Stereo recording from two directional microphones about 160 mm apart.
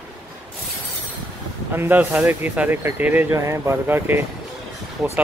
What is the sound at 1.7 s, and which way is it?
Speech, 15° right (ahead or behind).